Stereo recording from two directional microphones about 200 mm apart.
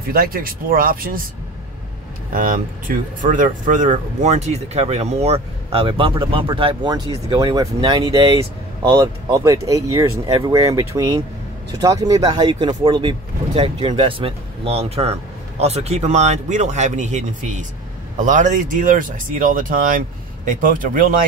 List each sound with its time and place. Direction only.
0.1 s speech: 45° right (ahead or behind)
2.3 s speech: 45° right (ahead or behind)